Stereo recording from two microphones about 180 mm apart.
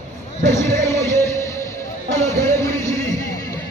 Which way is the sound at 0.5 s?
15° left (ahead or behind).